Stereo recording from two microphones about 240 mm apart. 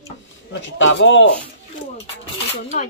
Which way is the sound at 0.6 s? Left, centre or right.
Left.